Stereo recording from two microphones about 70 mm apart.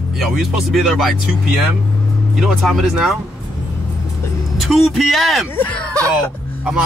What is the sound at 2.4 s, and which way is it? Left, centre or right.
Speech, centre.